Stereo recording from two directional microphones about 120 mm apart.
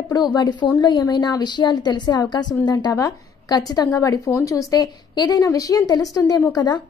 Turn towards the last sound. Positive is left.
turn(degrees=35)  # may be behind; listen again after turning